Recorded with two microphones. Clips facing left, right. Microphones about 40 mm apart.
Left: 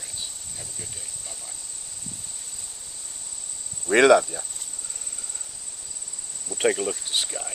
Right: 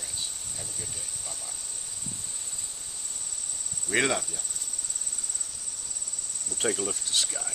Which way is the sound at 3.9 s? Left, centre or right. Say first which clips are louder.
Left 11 dB; left.